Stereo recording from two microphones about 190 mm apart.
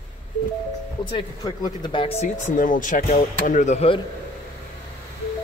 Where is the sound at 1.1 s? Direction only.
25° left (ahead or behind).